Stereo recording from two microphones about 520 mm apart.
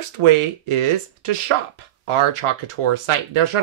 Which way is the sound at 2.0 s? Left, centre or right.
Right.